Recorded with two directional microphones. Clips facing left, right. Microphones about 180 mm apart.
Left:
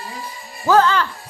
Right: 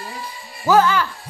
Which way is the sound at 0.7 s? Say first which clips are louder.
Even; 10° right (ahead or behind).